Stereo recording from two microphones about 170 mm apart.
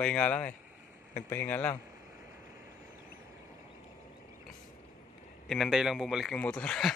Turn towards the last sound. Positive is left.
turn(degrees=5)  # may be behind; listen again after turning